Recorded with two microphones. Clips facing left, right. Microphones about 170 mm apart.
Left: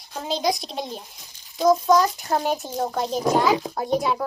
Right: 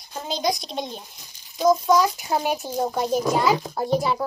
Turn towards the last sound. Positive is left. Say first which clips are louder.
# even
turn(degrees=0)  # may be behind; listen again after turning